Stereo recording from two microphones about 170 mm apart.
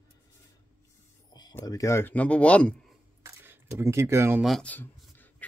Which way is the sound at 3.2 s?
15° right (ahead or behind).